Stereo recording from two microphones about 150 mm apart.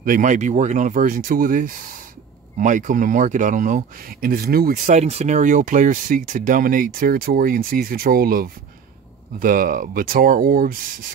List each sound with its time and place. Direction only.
0.0 s speech: 60° right (ahead or behind)